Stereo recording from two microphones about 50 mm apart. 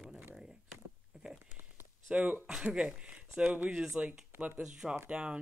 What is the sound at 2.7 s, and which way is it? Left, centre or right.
Speech, centre.